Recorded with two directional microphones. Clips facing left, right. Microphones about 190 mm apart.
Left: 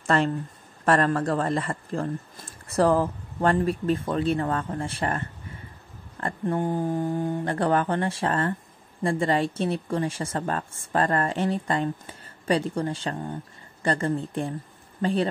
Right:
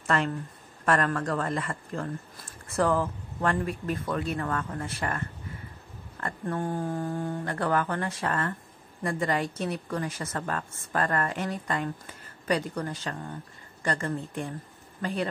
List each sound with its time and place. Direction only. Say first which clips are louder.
0.0 s a man's voice: left 4 dB; 30° left (ahead or behind)
6.4 s mantra: left 5 dB; 20° left (ahead or behind)
7.4 s a man's voice: left 4 dB; 25° left (ahead or behind)